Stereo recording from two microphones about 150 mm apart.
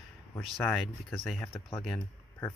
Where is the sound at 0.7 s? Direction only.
Centre (ahead or behind).